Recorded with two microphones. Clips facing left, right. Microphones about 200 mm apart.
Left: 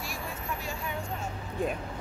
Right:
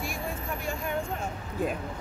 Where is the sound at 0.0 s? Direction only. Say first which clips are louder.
Right 4 dB; 55° right (ahead or behind).